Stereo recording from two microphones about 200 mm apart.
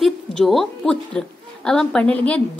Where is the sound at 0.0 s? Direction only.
Centre (ahead or behind).